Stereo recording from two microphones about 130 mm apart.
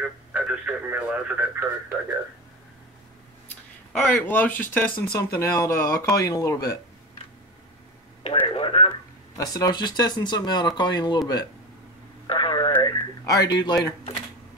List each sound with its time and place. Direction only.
0.0 s radio: 10° right (ahead or behind)
3.9 s speech: 10° left (ahead or behind); by 6.8 s 25° left (ahead or behind)
8.2 s a sound: 45° left (ahead or behind)
9.4 s speech: 30° left (ahead or behind)
12.3 s radio: 35° left (ahead or behind)
13.2 s speech: 30° left (ahead or behind)